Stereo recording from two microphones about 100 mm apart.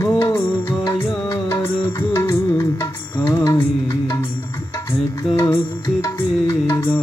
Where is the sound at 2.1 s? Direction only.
30° left (ahead or behind).